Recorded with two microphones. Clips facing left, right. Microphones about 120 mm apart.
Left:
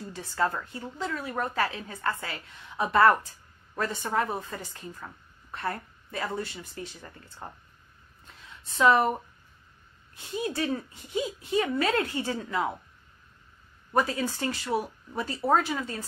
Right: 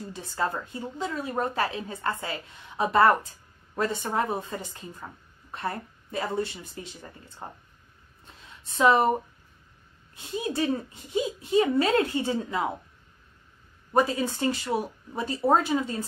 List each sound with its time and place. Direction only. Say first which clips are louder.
0.0 s a woman's voice: left 1 dB; 20° right (ahead or behind)
8.4 s a sound: right 1 dB; 25° right (ahead or behind)
10.1 s a woman's voice: right 1 dB; 25° right (ahead or behind)
13.9 s a woman's voice: right 3 dB; 25° right (ahead or behind)